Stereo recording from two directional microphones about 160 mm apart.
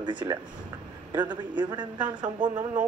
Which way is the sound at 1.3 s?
30° right (ahead or behind).